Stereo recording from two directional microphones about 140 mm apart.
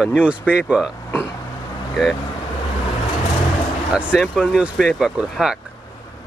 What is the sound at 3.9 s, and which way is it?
Speech, centre (ahead or behind).